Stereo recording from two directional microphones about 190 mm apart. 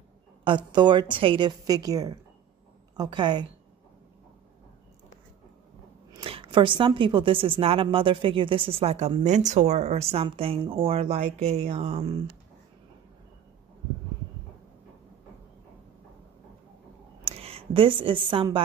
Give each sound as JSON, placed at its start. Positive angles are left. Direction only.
{"t": 0.4, "sound": "a woman's voice", "side_deg": -25}
{"t": 6.1, "sound": "a woman's voice", "side_deg": -25}
{"t": 17.2, "sound": "a sound", "side_deg": -30}